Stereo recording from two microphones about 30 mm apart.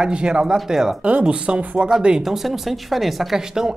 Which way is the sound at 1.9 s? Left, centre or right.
Right.